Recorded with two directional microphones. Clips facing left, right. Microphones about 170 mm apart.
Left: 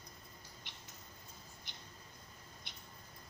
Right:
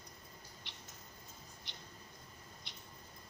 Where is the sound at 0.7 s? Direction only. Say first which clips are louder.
Right 1 dB; 50° left (ahead or behind).